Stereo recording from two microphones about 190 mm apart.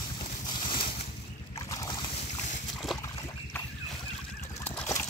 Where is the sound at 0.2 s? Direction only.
25° left (ahead or behind).